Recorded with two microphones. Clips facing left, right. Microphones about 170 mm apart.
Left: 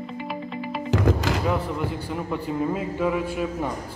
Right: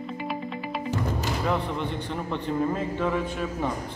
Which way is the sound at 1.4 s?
5° left (ahead or behind).